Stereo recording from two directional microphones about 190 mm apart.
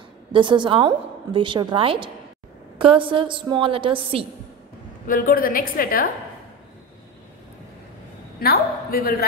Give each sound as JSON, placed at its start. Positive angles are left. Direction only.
{"t": 0.3, "sound": "a woman's voice", "side_deg": -25}
{"t": 5.0, "sound": "a woman's voice", "side_deg": 45}
{"t": 8.4, "sound": "a woman's voice", "side_deg": 50}